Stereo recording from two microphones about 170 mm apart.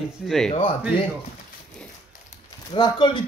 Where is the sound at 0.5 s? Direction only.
30° left (ahead or behind).